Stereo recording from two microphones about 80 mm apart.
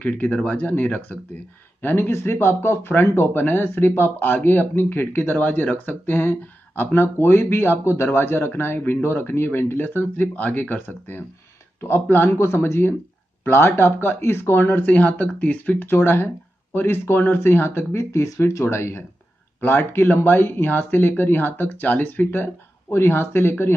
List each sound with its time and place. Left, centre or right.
0.0 s speech: centre